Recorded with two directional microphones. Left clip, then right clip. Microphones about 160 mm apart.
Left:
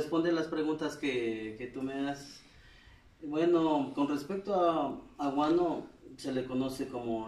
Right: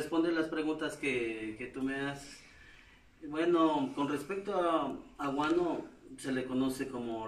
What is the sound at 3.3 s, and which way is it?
A man's voice, 10° left (ahead or behind).